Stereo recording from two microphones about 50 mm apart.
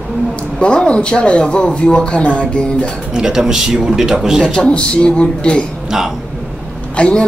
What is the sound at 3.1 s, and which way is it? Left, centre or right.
Speech, centre.